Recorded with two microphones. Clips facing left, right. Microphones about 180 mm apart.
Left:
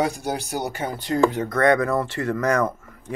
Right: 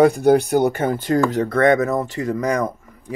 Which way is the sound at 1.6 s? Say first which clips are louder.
Right 2 dB; 20° right (ahead or behind).